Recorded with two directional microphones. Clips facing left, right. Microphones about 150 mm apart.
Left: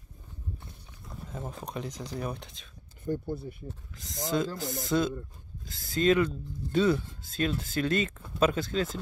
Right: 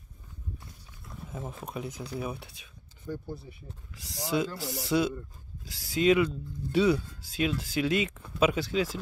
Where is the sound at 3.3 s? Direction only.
55° left (ahead or behind).